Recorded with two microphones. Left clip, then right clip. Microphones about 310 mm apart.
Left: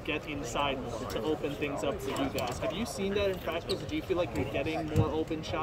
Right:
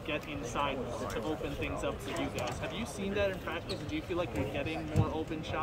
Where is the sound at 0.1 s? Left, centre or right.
Left.